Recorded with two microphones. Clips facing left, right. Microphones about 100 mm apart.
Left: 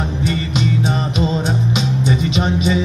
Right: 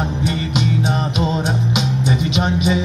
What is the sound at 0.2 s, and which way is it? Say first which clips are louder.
Music: left 3 dB; 15° right (ahead or behind).